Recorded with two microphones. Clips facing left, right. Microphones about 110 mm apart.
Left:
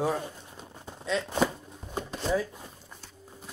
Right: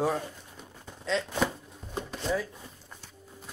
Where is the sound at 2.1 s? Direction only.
15° left (ahead or behind).